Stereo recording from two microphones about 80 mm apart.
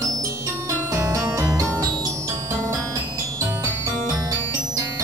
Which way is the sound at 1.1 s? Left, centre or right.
Right.